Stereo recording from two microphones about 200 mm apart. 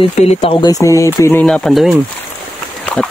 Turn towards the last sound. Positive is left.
turn(degrees=5)  # may be behind; listen again after turning